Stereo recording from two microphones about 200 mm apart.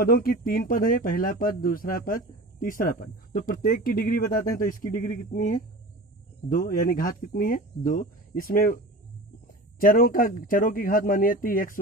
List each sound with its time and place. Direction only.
0.0 s speech: 45° left (ahead or behind)